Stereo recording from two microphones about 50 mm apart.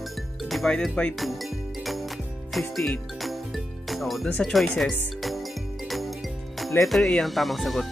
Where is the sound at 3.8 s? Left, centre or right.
Centre.